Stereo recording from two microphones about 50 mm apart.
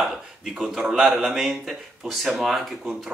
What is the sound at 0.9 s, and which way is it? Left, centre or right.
Speech, centre.